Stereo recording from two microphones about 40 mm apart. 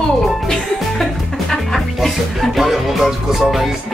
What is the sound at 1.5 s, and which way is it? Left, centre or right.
Music, centre.